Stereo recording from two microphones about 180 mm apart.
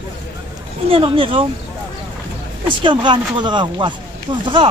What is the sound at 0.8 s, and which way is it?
Speech, 30° right (ahead or behind).